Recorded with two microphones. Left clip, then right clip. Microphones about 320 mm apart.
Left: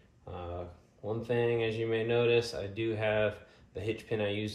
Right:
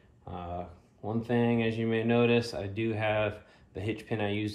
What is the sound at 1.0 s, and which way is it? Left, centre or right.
Speech, right.